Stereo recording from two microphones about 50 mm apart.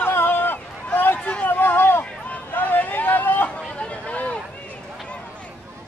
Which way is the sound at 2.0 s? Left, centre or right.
Left.